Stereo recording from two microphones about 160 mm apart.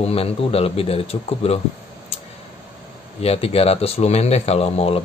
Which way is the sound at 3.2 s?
40° left (ahead or behind).